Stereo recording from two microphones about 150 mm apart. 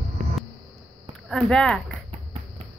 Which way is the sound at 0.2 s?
80° right.